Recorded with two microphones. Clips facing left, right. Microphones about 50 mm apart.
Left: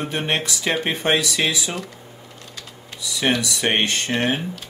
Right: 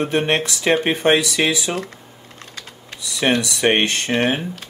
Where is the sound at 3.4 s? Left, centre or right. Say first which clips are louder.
Right 4 dB; right.